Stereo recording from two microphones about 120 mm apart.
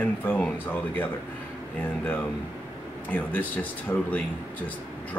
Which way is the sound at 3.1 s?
15° left (ahead or behind).